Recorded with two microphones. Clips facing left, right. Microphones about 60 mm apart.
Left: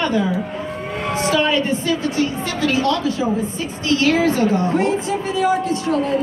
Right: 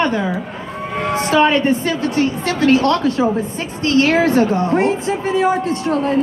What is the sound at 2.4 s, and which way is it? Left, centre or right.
A woman's voice, right.